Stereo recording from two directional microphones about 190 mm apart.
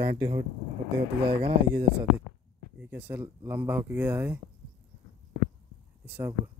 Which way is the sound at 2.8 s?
10° right (ahead or behind).